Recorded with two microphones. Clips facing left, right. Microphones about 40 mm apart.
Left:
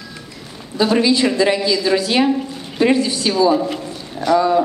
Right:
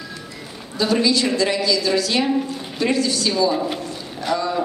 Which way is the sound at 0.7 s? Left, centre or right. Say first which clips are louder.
Left 4 dB; left.